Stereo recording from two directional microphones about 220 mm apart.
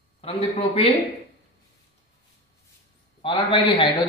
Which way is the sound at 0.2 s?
25° left (ahead or behind).